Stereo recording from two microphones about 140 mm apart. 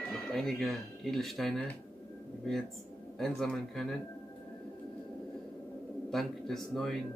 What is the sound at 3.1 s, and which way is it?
Speech, 5° left (ahead or behind).